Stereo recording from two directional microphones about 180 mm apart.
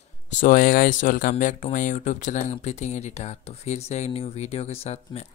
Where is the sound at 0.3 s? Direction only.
45° left (ahead or behind).